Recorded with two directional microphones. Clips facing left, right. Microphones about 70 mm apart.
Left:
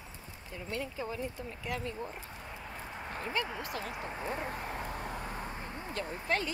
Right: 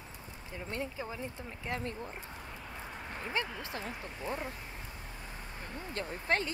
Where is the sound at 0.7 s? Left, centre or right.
Right.